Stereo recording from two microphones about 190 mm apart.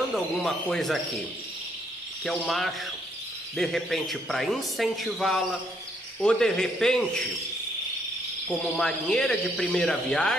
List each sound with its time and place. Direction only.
0.1 s speech: centre (ahead or behind)
2.2 s speech: centre (ahead or behind)
8.5 s speech: 5° left (ahead or behind)